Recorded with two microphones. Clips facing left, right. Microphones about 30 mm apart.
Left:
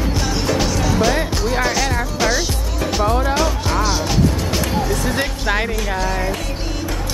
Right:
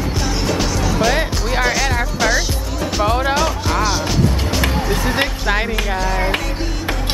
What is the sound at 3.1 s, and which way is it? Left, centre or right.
Speech, right.